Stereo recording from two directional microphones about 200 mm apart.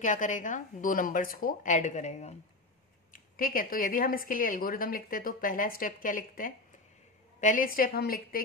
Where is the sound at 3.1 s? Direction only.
45° left (ahead or behind).